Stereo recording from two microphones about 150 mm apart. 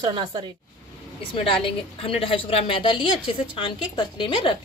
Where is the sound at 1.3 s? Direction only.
35° left (ahead or behind).